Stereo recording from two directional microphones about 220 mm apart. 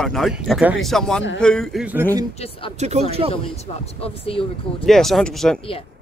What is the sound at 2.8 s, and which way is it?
Speech, 30° right (ahead or behind).